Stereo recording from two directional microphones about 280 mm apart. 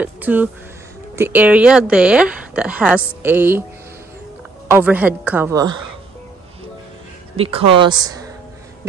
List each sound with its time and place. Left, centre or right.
0.0 s speech: centre
4.6 s a woman's voice: centre
7.3 s a woman's voice: centre